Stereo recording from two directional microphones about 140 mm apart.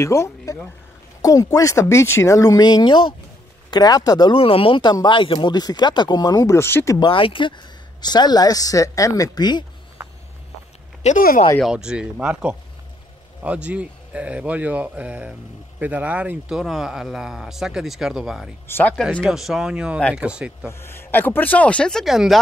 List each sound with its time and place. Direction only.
0.0 s speech: 20° left (ahead or behind)
4.4 s speech: 40° left (ahead or behind); by 7.0 s 20° left (ahead or behind)
7.0 s speech: 40° left (ahead or behind)
11.0 s speech: 65° left (ahead or behind)
11.6 s speech: 5° right (ahead or behind)
18.7 s speech: 15° left (ahead or behind)
19.1 s speech: centre (ahead or behind)
20.7 s speech: 15° left (ahead or behind); by 22.4 s centre (ahead or behind)